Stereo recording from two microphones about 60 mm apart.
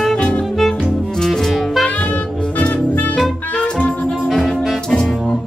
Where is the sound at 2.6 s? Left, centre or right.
Left.